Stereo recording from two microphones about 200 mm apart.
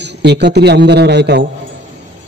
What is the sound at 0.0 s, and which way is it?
A man's voice, 55° right (ahead or behind).